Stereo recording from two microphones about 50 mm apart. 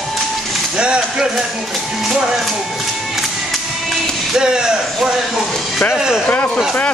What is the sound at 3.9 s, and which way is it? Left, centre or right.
Music, centre.